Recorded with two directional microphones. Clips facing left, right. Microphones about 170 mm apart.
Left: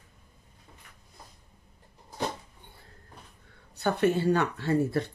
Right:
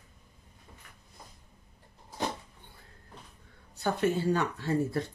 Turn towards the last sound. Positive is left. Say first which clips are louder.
# left 3 dB
turn(degrees=65)  # may be behind; listen again after turning